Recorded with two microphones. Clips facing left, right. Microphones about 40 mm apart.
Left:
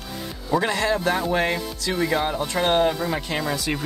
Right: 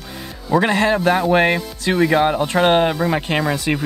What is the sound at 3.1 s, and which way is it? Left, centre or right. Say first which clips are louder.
Speech: right 6 dB; right.